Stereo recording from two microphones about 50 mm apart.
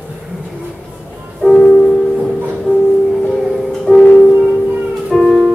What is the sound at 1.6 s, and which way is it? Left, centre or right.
Music, centre.